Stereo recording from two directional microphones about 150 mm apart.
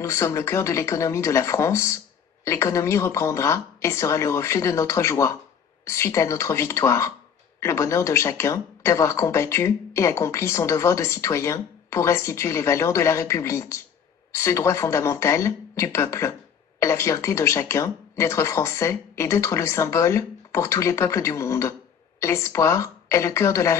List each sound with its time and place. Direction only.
0.0 s a woman's voice: 20° left (ahead or behind)